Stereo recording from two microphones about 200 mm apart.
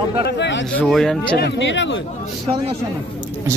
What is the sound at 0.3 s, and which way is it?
Speech, 60° left (ahead or behind).